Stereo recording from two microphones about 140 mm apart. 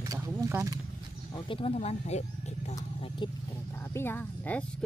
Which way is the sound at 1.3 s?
40° left (ahead or behind).